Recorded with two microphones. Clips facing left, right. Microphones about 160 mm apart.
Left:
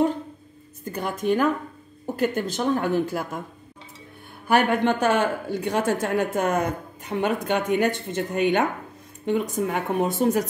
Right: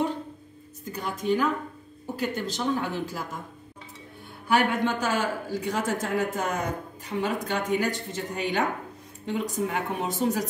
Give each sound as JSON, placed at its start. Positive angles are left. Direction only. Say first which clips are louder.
{"t": 0.9, "sound": "speech", "louder": "left 3 dB", "side_deg": 55}
{"t": 4.5, "sound": "speech", "louder": "left 4 dB", "side_deg": 55}